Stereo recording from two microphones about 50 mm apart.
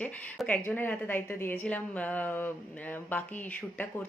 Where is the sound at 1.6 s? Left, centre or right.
Left.